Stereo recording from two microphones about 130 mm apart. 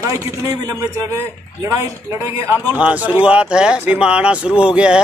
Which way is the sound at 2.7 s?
10° right (ahead or behind).